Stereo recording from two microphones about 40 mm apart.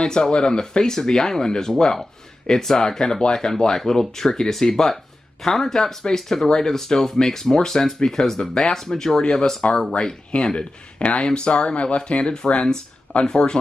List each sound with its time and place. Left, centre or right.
0.0 s speech: centre